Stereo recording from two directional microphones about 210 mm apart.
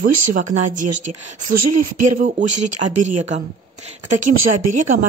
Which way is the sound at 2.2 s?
35° right (ahead or behind).